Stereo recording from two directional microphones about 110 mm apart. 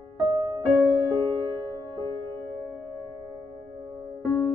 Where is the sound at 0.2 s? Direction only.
35° right (ahead or behind).